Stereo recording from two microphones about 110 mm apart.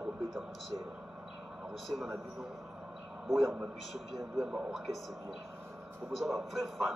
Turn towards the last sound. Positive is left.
turn(degrees=0)  # may be behind; listen again after turning